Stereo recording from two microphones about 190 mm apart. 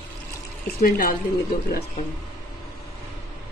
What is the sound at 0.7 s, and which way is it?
Speech, 50° left (ahead or behind).